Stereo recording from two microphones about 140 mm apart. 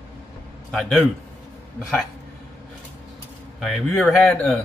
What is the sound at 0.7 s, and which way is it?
Speech, 5° left (ahead or behind).